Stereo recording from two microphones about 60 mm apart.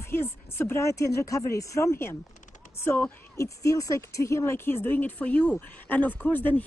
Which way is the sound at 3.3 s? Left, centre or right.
Left.